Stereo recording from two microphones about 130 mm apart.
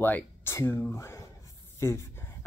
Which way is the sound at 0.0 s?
15° left (ahead or behind).